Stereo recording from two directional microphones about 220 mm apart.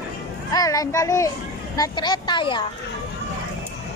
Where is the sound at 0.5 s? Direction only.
15° left (ahead or behind).